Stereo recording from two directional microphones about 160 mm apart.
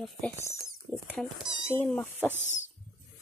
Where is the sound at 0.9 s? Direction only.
20° right (ahead or behind).